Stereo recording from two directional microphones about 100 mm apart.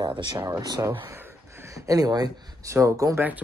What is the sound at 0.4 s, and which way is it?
Speech, 35° right (ahead or behind).